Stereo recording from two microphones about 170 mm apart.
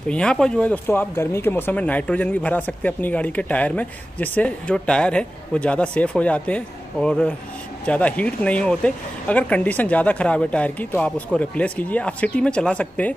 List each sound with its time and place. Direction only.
0.1 s speech: 5° left (ahead or behind)